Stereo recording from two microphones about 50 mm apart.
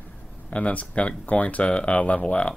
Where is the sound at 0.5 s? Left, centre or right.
Left.